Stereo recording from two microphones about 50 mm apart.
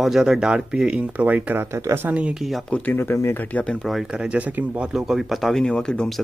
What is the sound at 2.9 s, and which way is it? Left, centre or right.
Speech, left.